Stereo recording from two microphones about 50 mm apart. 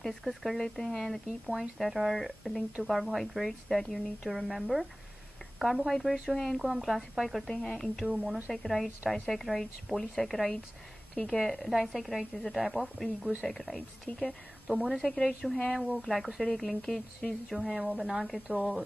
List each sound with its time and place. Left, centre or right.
0.2 s a woman's voice: centre
6.3 s a woman's voice: centre
6.6 s a woman's voice: centre
14.7 s a woman's voice: centre
17.6 s a woman's voice: centre